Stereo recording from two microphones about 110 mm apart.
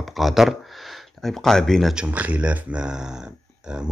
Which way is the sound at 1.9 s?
15° right (ahead or behind).